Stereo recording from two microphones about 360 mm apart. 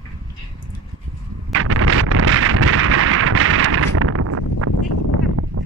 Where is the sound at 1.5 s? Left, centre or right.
Right.